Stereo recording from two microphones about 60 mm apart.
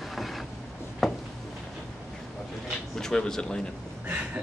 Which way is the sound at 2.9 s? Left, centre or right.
Centre.